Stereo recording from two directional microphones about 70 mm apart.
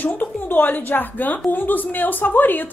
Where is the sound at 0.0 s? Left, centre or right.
Left.